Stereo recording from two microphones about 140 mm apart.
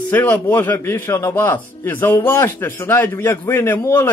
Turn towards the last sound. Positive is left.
turn(degrees=20)  # may be behind; listen again after turning